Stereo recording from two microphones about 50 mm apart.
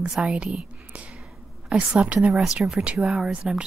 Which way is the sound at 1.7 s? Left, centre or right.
Right.